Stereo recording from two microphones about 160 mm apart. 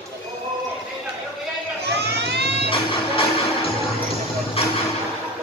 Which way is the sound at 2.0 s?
90° right.